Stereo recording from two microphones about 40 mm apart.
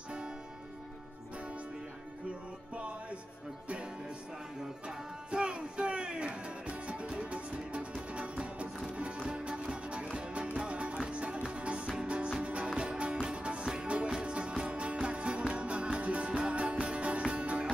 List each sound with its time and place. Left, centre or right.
2.7 s music: right